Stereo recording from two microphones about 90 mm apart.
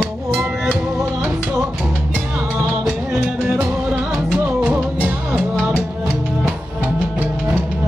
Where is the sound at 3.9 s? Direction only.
15° right (ahead or behind).